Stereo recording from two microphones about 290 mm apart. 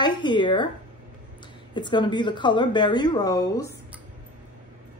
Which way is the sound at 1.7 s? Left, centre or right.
Centre.